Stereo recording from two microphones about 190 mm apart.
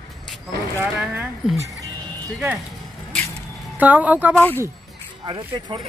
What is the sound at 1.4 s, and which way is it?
Speech, centre (ahead or behind).